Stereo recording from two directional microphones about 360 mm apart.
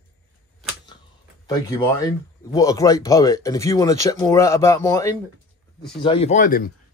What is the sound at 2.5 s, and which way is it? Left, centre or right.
Speech, centre.